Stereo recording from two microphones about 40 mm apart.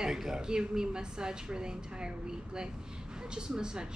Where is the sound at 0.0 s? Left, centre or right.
Centre.